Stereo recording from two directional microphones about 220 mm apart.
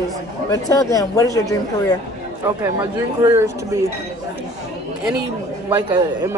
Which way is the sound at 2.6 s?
10° right (ahead or behind).